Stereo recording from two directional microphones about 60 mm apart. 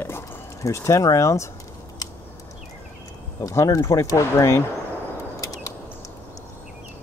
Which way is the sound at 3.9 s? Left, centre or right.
Left.